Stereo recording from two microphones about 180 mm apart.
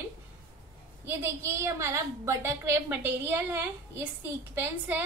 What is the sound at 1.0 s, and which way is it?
A woman's voice, 15° right (ahead or behind).